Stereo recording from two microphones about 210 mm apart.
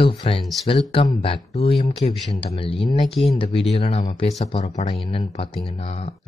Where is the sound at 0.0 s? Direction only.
25° left (ahead or behind).